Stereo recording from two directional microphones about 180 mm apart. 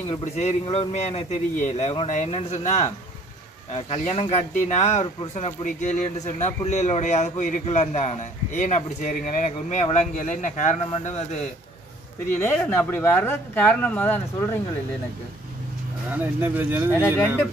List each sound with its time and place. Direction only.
0.2 s a man's voice: 40° left (ahead or behind)
12.3 s speech: 10° left (ahead or behind)
16.1 s speech: 10° right (ahead or behind)